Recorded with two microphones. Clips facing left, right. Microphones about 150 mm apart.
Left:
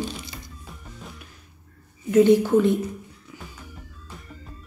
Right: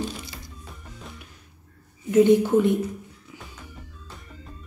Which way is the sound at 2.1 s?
20° right (ahead or behind).